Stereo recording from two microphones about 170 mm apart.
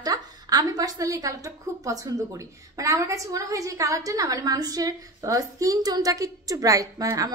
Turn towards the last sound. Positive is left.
turn(degrees=-20)  # may be behind; listen again after turning